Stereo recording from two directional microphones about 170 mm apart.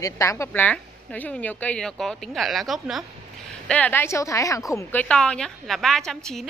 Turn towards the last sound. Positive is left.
turn(degrees=0)  # may be behind; listen again after turning